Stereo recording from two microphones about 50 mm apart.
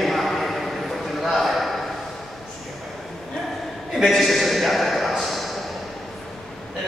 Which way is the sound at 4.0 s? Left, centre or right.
Centre.